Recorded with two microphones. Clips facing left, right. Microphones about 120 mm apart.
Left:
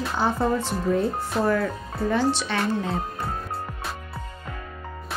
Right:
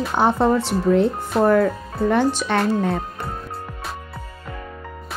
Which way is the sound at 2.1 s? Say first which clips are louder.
Right 4 dB; 50° right (ahead or behind).